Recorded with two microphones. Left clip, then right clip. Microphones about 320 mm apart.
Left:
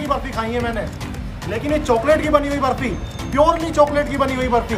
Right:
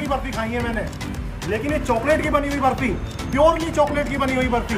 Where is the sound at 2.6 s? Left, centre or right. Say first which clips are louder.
Even; centre.